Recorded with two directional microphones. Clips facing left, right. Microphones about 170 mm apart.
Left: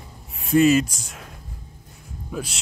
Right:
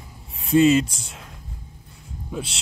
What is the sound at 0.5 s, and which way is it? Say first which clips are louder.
Speech: even; 25° right (ahead or behind).